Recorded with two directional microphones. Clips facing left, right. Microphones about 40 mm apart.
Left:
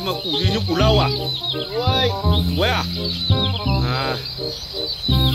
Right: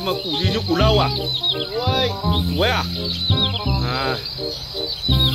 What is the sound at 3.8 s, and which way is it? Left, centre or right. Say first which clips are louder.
Speech: even; centre.